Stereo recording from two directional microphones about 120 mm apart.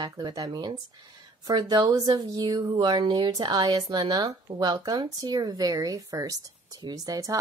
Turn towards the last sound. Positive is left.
turn(degrees=-30)  # may be behind; listen again after turning